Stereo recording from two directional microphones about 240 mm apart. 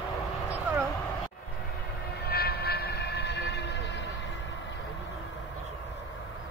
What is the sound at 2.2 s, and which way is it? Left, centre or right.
Train, left.